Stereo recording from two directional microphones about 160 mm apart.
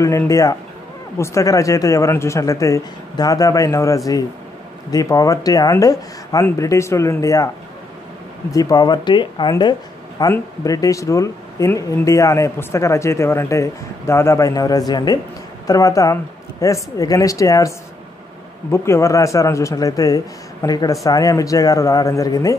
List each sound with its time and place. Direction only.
0.0 s speech: 20° left (ahead or behind)